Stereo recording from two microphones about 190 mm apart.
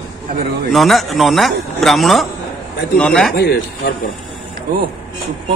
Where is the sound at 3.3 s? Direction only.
55° left (ahead or behind).